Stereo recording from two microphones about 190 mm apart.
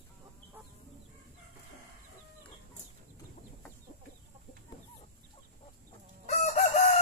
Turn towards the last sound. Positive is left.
turn(degrees=35)  # may be behind; listen again after turning